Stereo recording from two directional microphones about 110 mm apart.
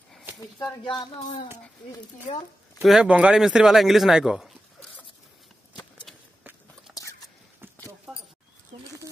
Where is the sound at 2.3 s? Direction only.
85° left.